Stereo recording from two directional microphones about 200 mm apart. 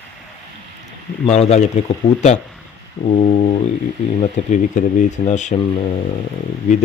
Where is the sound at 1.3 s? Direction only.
35° left (ahead or behind).